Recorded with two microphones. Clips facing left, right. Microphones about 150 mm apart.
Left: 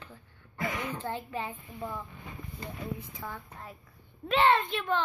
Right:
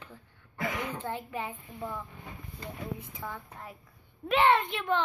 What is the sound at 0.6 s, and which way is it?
A woman's voice, 5° right (ahead or behind).